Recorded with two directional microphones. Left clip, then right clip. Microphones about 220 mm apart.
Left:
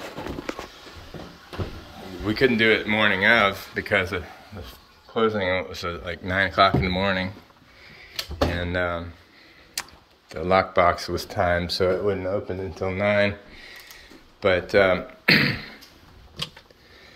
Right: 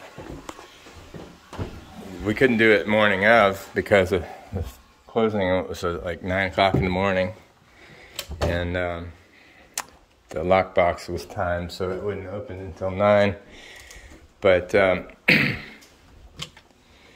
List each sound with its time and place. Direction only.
2.2 s speech: 15° right (ahead or behind)
8.5 s speech: 10° right (ahead or behind)
9.8 s a sound: 20° right (ahead or behind)
10.4 s speech: 10° right (ahead or behind)
11.3 s speech: 35° left (ahead or behind)
13.0 s speech: 20° right (ahead or behind)